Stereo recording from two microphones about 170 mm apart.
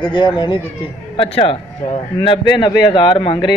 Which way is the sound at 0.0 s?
25° left (ahead or behind).